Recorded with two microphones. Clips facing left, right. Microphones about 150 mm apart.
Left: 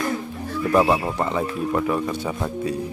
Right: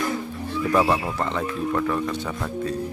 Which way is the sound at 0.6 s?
5° left (ahead or behind).